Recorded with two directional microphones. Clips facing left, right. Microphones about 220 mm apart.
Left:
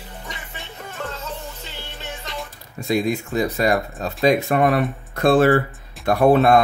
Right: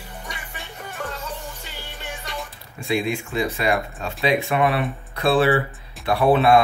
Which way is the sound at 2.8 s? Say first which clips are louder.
Left 3 dB; 40° left (ahead or behind).